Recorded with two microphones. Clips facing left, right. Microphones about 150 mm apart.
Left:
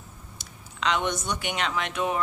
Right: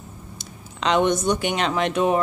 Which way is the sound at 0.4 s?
30° right (ahead or behind).